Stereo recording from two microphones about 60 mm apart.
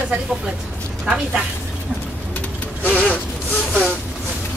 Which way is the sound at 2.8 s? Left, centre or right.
Left.